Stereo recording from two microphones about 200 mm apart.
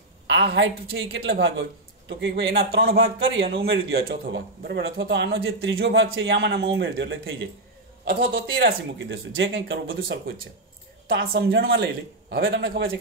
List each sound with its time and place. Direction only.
0.3 s a man's voice: 60° right (ahead or behind)
2.7 s a man's voice: 50° right (ahead or behind)
4.6 s a man's voice: 65° right (ahead or behind)
8.3 s speech: 50° right (ahead or behind); by 10.1 s 75° right (ahead or behind)
11.1 s speech: 65° right (ahead or behind)
11.8 s a man's voice: 50° right (ahead or behind)
12.4 s a man's voice: 60° right (ahead or behind)